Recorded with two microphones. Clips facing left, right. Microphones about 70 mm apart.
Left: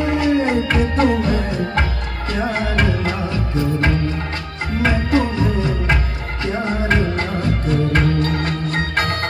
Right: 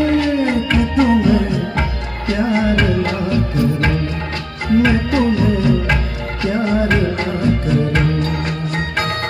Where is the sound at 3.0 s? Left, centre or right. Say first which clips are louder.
Right 4 dB; left.